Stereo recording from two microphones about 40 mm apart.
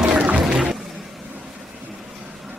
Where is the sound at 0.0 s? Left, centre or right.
Right.